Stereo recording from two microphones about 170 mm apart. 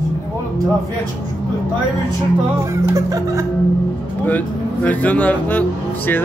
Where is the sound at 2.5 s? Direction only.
15° right (ahead or behind).